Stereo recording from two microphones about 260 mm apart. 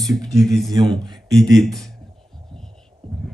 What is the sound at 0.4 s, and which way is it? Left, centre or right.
Speech, centre.